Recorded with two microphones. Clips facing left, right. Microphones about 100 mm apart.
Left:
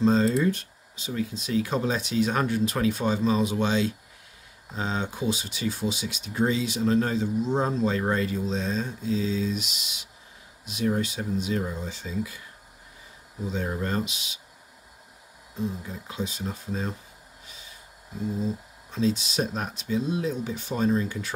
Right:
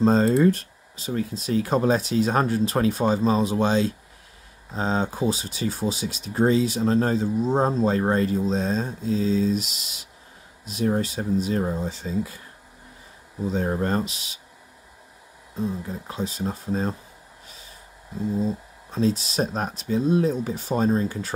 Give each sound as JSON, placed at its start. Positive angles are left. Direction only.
{"t": 0.0, "sound": "speech", "side_deg": -45}
{"t": 13.5, "sound": "speech", "side_deg": -40}
{"t": 15.5, "sound": "speech", "side_deg": -40}
{"t": 17.5, "sound": "snort", "side_deg": -40}
{"t": 18.4, "sound": "speech", "side_deg": -40}